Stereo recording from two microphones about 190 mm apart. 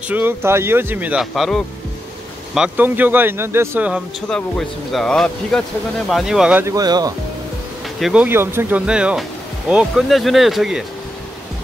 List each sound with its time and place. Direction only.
0.1 s speech: 10° right (ahead or behind)
4.3 s speech: centre (ahead or behind)
6.6 s speech: 20° right (ahead or behind)
8.0 s speech: 5° right (ahead or behind)